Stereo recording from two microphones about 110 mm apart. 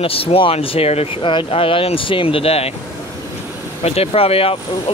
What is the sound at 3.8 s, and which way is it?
Speech, 70° left (ahead or behind).